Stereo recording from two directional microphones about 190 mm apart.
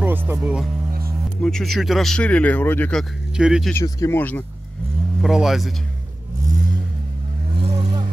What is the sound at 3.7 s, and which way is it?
Speech, 15° left (ahead or behind).